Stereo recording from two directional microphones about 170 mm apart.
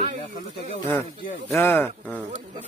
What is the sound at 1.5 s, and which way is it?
Speech, 15° left (ahead or behind).